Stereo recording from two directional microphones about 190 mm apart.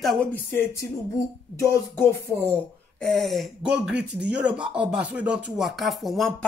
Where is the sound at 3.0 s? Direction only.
Centre (ahead or behind).